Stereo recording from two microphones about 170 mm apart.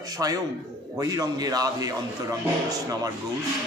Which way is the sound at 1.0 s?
25° right (ahead or behind).